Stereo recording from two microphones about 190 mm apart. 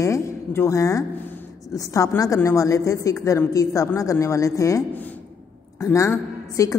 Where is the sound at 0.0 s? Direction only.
15° left (ahead or behind).